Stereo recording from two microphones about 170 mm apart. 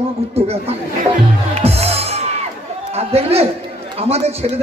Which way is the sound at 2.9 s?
35° right (ahead or behind).